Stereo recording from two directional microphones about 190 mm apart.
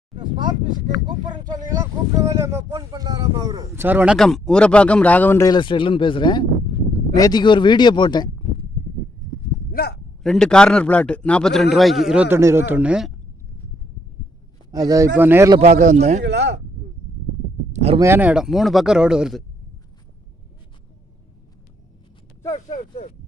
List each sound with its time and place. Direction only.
0.7 s speech: 25° right (ahead or behind); by 8.3 s 25° left (ahead or behind)
9.7 s a sound: 55° left (ahead or behind)
10.2 s speech: centre (ahead or behind)
14.7 s a man's voice: 20° right (ahead or behind)
15.6 s speech: 40° right (ahead or behind)
16.3 s speech: 65° right (ahead or behind)
17.9 s speech: 15° right (ahead or behind)
22.7 s speech: 35° left (ahead or behind)